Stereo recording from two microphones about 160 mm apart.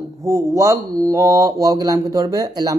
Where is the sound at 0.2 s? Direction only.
20° right (ahead or behind).